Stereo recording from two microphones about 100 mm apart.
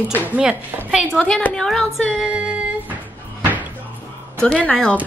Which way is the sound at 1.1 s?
10° left (ahead or behind).